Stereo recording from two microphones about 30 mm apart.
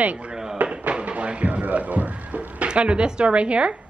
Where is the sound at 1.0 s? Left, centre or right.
Right.